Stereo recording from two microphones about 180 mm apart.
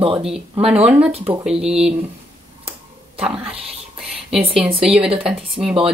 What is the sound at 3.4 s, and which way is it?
Whispering, 30° right (ahead or behind).